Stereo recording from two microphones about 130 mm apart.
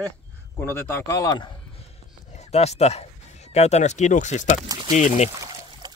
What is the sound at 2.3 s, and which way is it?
Speech, 55° left (ahead or behind).